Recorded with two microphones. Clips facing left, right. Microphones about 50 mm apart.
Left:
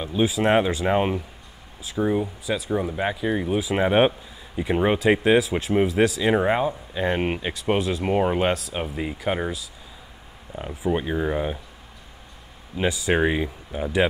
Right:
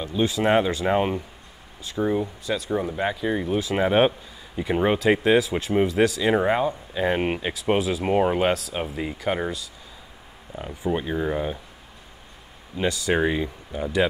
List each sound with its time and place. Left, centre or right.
0.0 s speech: centre
10.8 s speech: centre
12.7 s speech: centre